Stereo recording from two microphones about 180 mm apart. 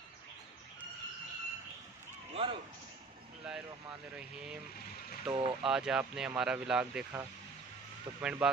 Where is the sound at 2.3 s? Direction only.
30° right (ahead or behind).